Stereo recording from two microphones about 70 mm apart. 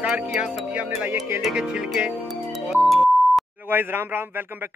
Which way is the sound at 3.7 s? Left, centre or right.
Right.